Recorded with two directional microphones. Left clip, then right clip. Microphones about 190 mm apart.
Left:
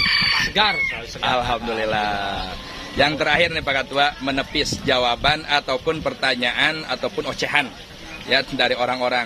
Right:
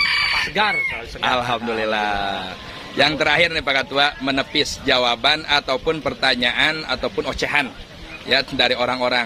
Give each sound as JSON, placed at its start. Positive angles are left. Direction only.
{"t": 0.0, "sound": "chicken", "side_deg": -60}
{"t": 1.2, "sound": "a man's voice", "side_deg": -15}